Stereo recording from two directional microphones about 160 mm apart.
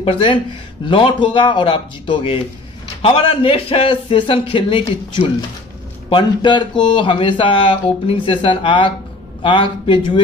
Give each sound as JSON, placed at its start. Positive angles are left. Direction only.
{"t": 0.0, "sound": "speech", "side_deg": 35}